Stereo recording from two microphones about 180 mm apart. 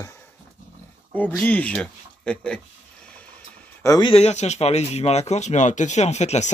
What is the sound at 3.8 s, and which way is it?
Speech, 20° left (ahead or behind).